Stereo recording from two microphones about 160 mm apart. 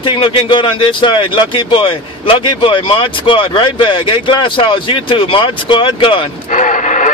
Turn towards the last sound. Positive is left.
turn(degrees=50)  # may be behind; listen again after turning